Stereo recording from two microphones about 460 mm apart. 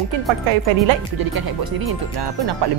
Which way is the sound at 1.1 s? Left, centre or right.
Right.